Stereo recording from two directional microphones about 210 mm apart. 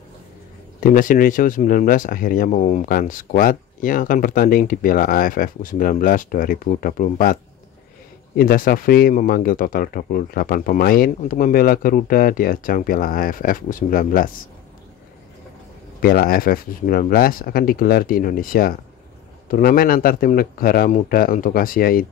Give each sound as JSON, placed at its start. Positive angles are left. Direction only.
{"t": 0.7, "sound": "speech", "side_deg": 40}
{"t": 8.4, "sound": "speech", "side_deg": 45}
{"t": 16.0, "sound": "speech", "side_deg": 45}